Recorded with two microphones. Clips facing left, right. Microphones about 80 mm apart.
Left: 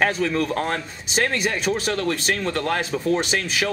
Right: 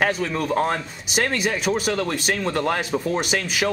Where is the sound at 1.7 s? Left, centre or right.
Centre.